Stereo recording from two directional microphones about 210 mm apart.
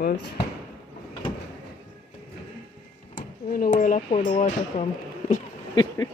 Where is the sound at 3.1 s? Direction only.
40° left (ahead or behind).